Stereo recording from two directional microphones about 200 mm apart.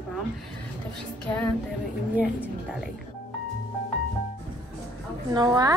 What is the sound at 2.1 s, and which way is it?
Speech, 5° right (ahead or behind).